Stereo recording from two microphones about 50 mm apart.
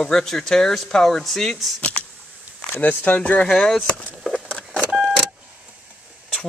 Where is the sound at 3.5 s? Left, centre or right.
Centre.